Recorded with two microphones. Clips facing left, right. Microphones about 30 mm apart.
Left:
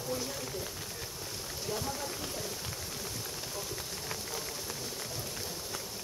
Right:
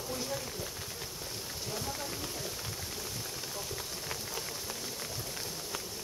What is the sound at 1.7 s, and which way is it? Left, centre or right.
Run, centre.